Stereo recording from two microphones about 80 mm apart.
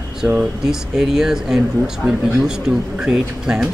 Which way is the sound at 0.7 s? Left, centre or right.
Centre.